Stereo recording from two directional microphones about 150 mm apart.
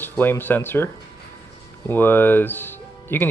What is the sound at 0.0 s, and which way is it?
Speech, 15° left (ahead or behind).